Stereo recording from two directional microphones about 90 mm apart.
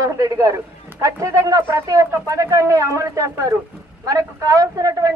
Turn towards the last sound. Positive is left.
turn(degrees=-40)  # may be behind; listen again after turning